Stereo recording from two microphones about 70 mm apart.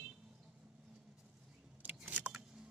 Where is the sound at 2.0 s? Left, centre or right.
Right.